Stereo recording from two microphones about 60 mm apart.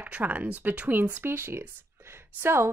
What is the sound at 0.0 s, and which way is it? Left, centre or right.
A woman's voice, right.